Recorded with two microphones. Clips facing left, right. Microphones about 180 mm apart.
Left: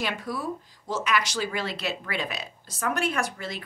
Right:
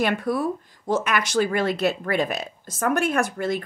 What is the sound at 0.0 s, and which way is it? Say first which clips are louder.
Speech: right 8 dB; 55° right (ahead or behind).